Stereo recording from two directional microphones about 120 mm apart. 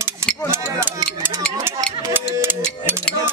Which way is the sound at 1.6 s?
30° right (ahead or behind).